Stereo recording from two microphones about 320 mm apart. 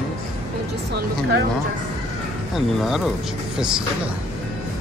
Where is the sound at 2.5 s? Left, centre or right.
Centre.